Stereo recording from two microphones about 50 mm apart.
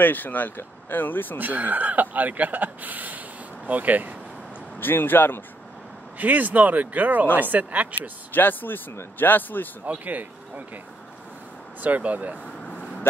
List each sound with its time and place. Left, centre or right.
0.0 s speech: left
1.4 s speech: right
4.7 s speech: left
6.1 s speech: right
8.3 s speech: left
9.8 s speech: right
11.8 s speech: right